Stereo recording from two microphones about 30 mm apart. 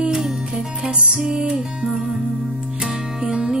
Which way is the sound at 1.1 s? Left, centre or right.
Right.